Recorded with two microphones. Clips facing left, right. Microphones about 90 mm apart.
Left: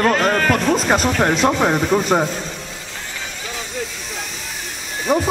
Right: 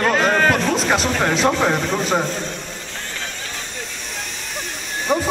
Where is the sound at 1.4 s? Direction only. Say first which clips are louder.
Left 2 dB; 10° left (ahead or behind).